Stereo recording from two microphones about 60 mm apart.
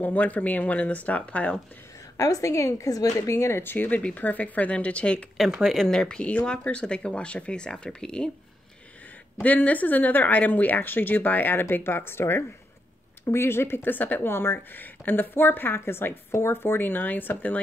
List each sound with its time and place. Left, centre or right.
0.0 s speech: left
2.1 s a woman's voice: left
3.2 s a woman's voice: left
3.5 s a woman's voice: left; by 5.2 s centre
5.4 s speech: centre
5.9 s speech: centre
9.4 s a woman's voice: left
14.3 s a woman's voice: left